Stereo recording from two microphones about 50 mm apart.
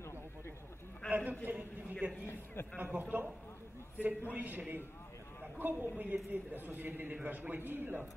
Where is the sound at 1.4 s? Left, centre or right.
Right.